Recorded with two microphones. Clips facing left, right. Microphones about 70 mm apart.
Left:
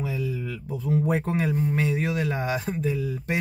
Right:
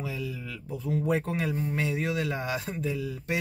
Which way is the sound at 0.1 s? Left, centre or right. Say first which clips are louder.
Left 6 dB; left.